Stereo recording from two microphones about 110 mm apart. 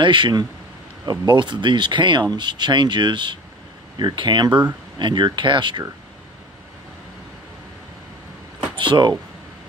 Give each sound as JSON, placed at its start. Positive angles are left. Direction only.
{"t": 0.0, "sound": "speech", "side_deg": -45}
{"t": 4.5, "sound": "speech", "side_deg": -10}
{"t": 4.9, "sound": "speech", "side_deg": -45}
{"t": 8.7, "sound": "speech", "side_deg": -45}